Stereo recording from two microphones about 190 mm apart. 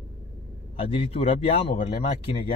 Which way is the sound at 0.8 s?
30° left (ahead or behind).